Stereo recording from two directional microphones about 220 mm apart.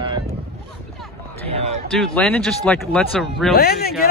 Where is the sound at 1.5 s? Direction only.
30° right (ahead or behind).